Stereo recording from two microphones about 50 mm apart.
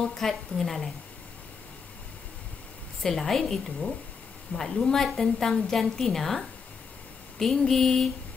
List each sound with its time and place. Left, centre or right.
0.0 s a woman's voice: centre
3.0 s a woman's voice: centre